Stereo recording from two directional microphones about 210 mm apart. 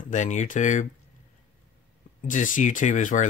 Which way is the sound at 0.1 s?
35° left (ahead or behind).